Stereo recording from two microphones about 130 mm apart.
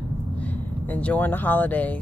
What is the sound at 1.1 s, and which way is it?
Speech, 15° left (ahead or behind).